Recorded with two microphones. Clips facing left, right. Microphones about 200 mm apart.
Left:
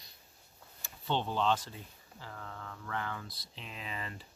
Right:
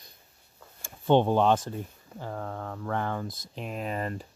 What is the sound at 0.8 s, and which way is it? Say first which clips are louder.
Speech: right 13 dB; 50° right (ahead or behind).